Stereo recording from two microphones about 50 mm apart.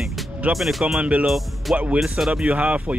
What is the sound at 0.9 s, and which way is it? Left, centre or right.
Speech, right.